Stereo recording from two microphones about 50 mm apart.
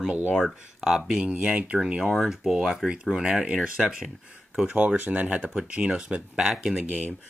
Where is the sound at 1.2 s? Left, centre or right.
Right.